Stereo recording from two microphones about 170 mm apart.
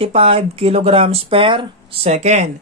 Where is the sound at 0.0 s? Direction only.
35° right (ahead or behind).